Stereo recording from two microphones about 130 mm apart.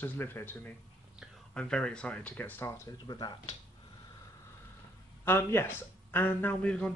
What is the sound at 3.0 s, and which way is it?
Speech, 30° left (ahead or behind).